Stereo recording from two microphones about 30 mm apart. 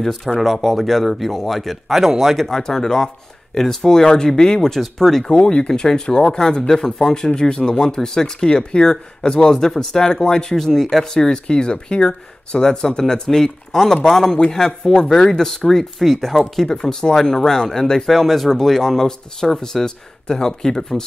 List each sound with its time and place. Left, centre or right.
0.0 s speech: centre
2.0 s speech: centre
2.3 s speech: centre
5.3 s speech: left
8.4 s speech: left; by 11.1 s centre
11.1 s speech: left; by 16.3 s centre
16.7 s speech: left
18.0 s speech: centre